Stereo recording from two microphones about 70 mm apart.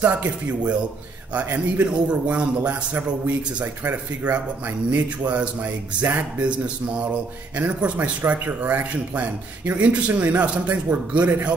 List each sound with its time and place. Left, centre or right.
0.0 s a man's voice: right
1.9 s a man's voice: centre
10.7 s speech: right